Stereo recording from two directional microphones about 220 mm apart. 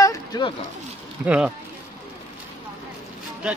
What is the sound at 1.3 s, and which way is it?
Speech, 5° right (ahead or behind).